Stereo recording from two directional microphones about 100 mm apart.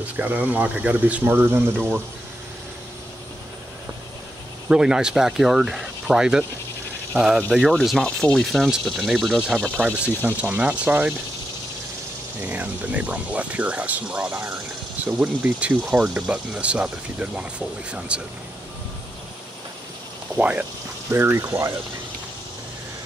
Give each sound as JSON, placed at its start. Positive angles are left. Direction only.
{"t": 0.0, "sound": "speech", "side_deg": -15}
{"t": 4.6, "sound": "speech", "side_deg": -5}
{"t": 7.7, "sound": "speech", "side_deg": 5}
{"t": 9.8, "sound": "speech", "side_deg": -15}
{"t": 12.4, "sound": "speech", "side_deg": -15}
{"t": 20.3, "sound": "speech", "side_deg": -15}